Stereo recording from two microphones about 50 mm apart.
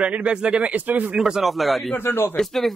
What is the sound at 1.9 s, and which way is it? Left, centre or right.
Speech, left.